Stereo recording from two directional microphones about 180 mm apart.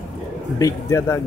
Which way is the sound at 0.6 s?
15° left (ahead or behind).